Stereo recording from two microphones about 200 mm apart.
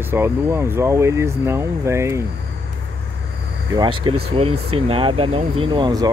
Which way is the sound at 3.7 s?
25° right (ahead or behind).